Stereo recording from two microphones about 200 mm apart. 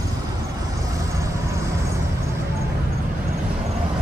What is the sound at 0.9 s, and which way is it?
Vehicle, 15° right (ahead or behind).